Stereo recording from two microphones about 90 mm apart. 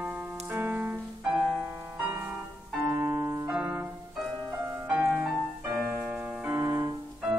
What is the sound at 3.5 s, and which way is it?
Music, 15° right (ahead or behind).